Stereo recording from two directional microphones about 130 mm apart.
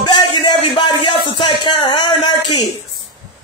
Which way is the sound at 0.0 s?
35° left (ahead or behind).